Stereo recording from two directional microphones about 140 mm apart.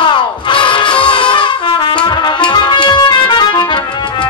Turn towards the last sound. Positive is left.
turn(degrees=35)  # may be behind; listen again after turning